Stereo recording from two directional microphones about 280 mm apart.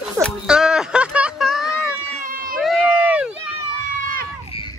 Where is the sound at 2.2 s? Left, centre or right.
Right.